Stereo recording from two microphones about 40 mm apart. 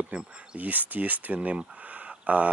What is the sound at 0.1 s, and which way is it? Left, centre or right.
Speech, right.